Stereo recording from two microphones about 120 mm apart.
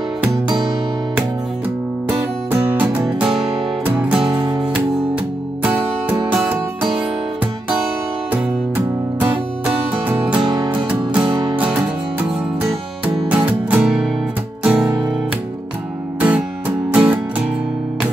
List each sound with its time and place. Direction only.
2.0 s music: 20° right (ahead or behind)
3.2 s music: 5° right (ahead or behind)
8.3 s music: 15° right (ahead or behind)
10.4 s music: 40° right (ahead or behind)
10.7 s music: 15° right (ahead or behind)
11.2 s music: 40° right (ahead or behind)
13.1 s music: 10° right (ahead or behind)
16.2 s music: 10° right (ahead or behind)